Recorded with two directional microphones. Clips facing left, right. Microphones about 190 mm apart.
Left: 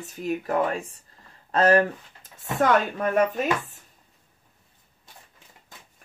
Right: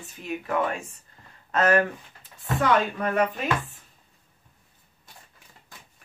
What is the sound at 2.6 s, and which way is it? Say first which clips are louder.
Speech: left 2 dB; 45° left (ahead or behind).